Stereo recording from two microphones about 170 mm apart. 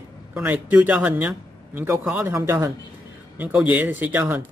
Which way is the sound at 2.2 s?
15° right (ahead or behind).